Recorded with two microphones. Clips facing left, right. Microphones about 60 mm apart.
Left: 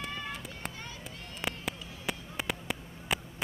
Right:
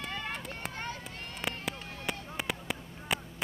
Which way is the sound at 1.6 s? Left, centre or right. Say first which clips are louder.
Right 1 dB; centre.